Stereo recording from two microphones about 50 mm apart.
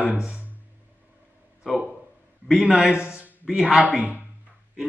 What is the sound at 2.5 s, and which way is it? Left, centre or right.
A man's voice, centre.